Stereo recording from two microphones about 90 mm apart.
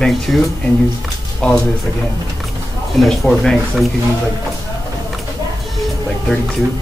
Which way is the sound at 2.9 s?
Centre (ahead or behind).